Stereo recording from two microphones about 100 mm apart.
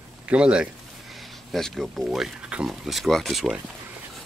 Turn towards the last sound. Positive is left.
turn(degrees=0)  # may be behind; listen again after turning